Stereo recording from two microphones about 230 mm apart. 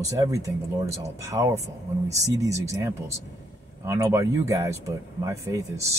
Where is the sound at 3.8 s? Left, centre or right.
Centre.